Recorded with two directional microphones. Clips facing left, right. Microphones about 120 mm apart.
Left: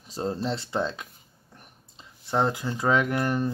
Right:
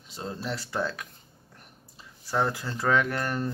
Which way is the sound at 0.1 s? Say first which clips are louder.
Left 6 dB; 35° left (ahead or behind).